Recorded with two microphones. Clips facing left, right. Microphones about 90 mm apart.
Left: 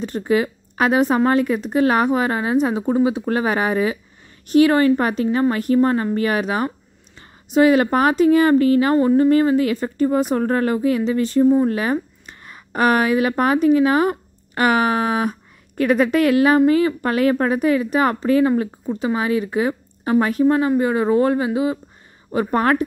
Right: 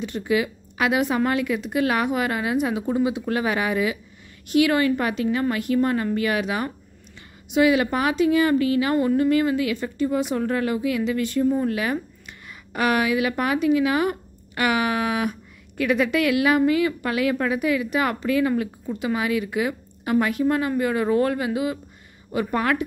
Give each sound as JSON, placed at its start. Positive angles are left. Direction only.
{"t": 0.0, "sound": "a woman's voice", "side_deg": 40}
{"t": 8.9, "sound": "a woman's voice", "side_deg": 30}
{"t": 22.3, "sound": "a woman's voice", "side_deg": 40}